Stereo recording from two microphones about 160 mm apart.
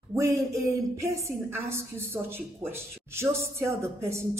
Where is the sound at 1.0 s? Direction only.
20° right (ahead or behind).